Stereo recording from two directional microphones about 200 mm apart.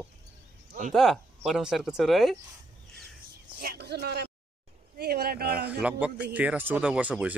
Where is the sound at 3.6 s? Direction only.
55° right (ahead or behind).